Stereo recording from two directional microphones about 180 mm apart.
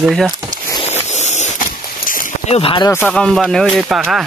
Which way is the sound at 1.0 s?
40° left (ahead or behind).